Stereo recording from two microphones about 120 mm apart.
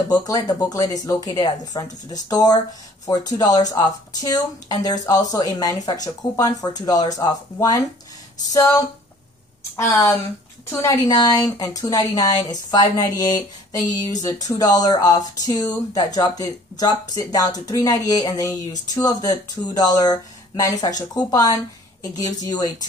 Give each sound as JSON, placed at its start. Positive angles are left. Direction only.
{"t": 0.1, "sound": "a woman's voice", "side_deg": 35}